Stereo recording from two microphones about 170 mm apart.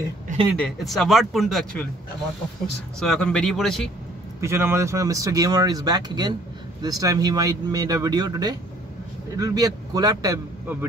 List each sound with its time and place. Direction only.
0.6 s speech: centre (ahead or behind)
3.0 s speech: 5° left (ahead or behind)
4.4 s speech: 15° right (ahead or behind)